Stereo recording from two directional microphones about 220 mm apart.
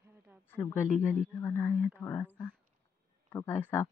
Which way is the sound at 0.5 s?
10° left (ahead or behind).